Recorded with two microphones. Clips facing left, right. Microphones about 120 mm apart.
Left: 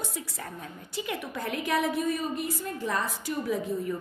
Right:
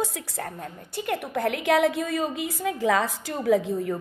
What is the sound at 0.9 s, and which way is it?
A woman's voice, 55° right (ahead or behind).